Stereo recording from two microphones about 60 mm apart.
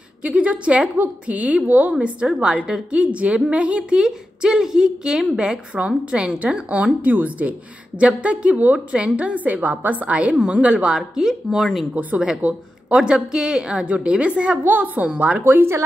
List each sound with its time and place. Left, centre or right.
0.2 s a woman's voice: right
11.0 s a woman's voice: centre
11.9 s a woman's voice: right
14.6 s a woman's voice: right
15.4 s speech: right